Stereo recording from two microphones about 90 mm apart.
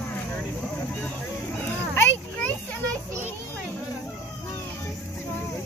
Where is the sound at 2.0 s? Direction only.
20° left (ahead or behind).